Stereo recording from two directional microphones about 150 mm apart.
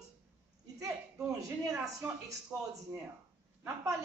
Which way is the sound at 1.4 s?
20° right (ahead or behind).